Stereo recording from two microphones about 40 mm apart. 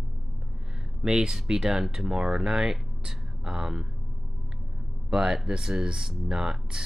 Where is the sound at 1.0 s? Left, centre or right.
Centre.